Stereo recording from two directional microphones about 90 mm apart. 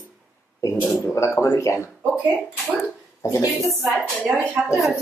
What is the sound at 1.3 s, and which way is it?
Speech, 30° left (ahead or behind).